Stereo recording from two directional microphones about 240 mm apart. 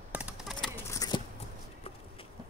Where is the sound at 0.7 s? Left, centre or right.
Centre.